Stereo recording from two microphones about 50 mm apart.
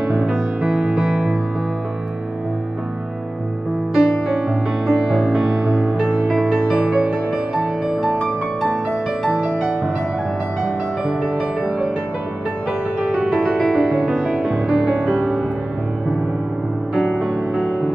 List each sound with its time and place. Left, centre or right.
0.1 s music: centre
0.6 s music: centre
3.9 s music: centre
5.3 s music: centre
5.9 s music: centre
9.3 s music: right
13.0 s music: centre
16.9 s music: centre